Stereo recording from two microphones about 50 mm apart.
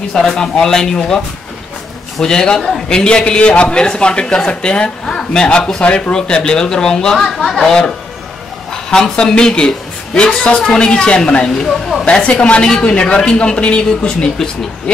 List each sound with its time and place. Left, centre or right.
0.3 s a woman's voice: centre
2.2 s a woman's voice: centre
8.9 s a man's voice: centre
12.0 s a man's voice: left